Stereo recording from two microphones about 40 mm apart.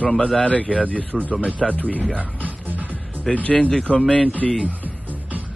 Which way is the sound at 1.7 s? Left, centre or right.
Left.